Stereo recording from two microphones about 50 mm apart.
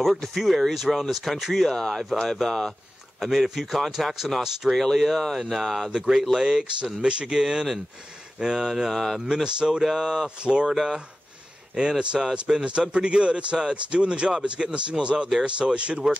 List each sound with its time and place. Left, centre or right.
0.0 s speech: centre
3.2 s speech: centre
5.9 s speech: centre
9.3 s speech: centre
10.7 s speech: centre